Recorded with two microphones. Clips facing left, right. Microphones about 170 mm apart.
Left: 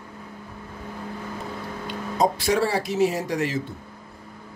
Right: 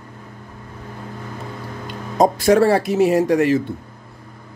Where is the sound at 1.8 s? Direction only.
50° right (ahead or behind).